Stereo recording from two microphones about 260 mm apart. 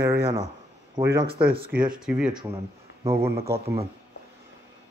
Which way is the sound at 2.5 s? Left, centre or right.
Right.